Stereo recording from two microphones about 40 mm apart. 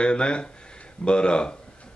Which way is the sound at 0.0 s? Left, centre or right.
Left.